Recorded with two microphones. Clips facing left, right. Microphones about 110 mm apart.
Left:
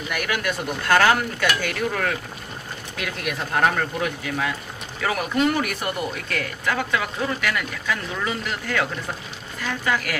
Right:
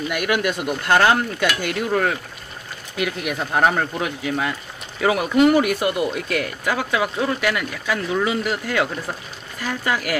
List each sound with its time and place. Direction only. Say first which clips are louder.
0.1 s speech: right 3 dB; 15° right (ahead or behind)